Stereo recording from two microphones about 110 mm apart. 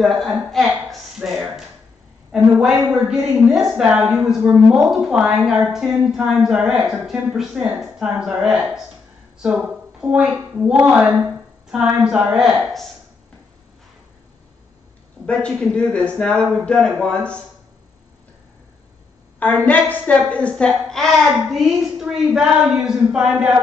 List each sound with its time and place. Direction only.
0.0 s a woman's voice: centre (ahead or behind)
15.2 s a man's voice: 5° left (ahead or behind)
19.4 s a man's voice: 15° left (ahead or behind); by 23.6 s 5° right (ahead or behind)